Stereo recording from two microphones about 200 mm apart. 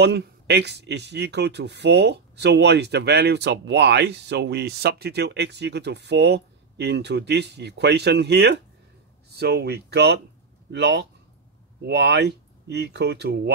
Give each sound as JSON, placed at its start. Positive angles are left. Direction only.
{"t": 0.0, "sound": "speech", "side_deg": -55}